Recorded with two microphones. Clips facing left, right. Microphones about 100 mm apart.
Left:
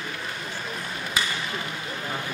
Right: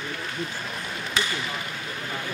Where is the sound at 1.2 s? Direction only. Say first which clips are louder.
Right 1 dB; 5° left (ahead or behind).